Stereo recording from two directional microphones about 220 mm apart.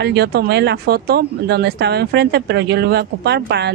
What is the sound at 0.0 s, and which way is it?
Speech, 50° right (ahead or behind).